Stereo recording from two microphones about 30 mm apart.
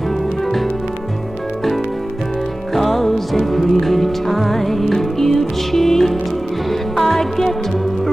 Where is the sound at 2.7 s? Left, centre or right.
Centre.